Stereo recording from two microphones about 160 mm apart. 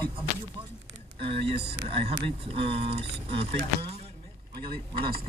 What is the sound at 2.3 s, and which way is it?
Speech, 35° right (ahead or behind).